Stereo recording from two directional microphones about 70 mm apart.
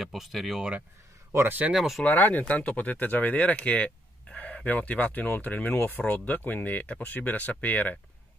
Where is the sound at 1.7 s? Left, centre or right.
Centre.